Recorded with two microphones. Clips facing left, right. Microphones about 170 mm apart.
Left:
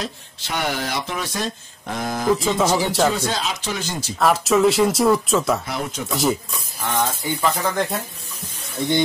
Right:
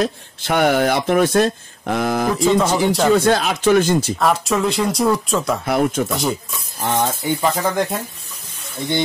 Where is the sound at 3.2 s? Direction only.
60° right (ahead or behind).